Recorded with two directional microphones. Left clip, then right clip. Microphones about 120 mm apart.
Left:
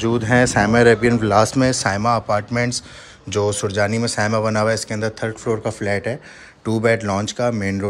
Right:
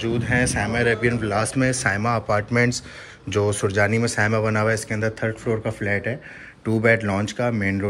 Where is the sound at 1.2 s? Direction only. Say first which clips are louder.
Left 6 dB; 55° left (ahead or behind); by 7.8 s 35° left (ahead or behind).